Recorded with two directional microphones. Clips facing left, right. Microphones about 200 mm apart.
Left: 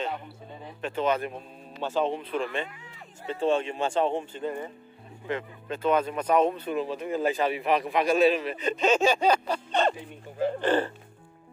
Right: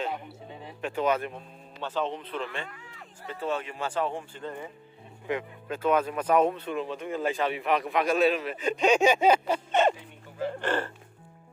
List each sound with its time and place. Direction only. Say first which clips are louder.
0.7 s speech: even; 10° right (ahead or behind)
1.8 s speech: left 4 dB; 10° left (ahead or behind)
3.3 s speech: left 6 dB; 30° left (ahead or behind)
5.3 s speech: even; 10° right (ahead or behind)